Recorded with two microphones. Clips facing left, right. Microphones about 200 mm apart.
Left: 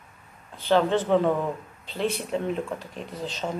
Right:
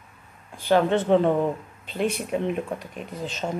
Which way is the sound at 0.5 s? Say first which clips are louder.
Right 1 dB; 15° right (ahead or behind).